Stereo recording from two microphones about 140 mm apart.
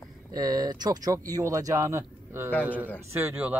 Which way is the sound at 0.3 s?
30° right (ahead or behind).